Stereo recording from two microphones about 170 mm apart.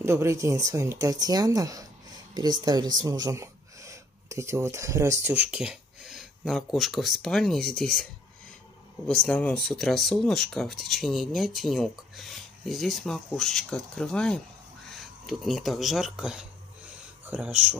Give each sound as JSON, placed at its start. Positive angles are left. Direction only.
{"t": 0.0, "sound": "speech", "side_deg": -15}